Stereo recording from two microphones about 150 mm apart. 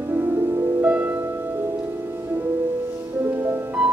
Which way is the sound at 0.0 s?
15° right (ahead or behind).